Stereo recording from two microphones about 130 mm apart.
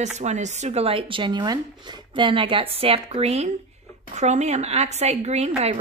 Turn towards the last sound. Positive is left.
turn(degrees=-55)  # may be behind; listen again after turning